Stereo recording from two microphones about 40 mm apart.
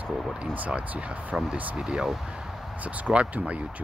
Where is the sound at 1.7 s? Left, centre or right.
Centre.